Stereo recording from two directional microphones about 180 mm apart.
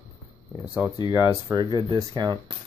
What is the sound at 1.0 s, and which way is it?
Speech, 20° right (ahead or behind).